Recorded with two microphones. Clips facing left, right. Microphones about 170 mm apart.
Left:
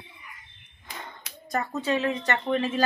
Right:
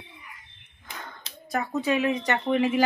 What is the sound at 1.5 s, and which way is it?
Speech, 10° right (ahead or behind).